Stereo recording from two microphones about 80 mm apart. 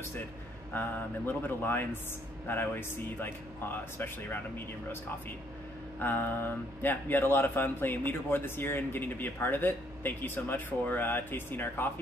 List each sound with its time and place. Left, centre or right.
0.7 s speech: left
5.9 s speech: left